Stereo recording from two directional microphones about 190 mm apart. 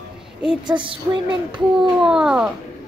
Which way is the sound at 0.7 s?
25° right (ahead or behind).